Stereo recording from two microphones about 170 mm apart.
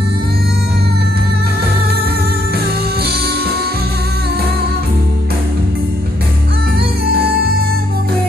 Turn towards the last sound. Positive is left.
turn(degrees=-65)  # may be behind; listen again after turning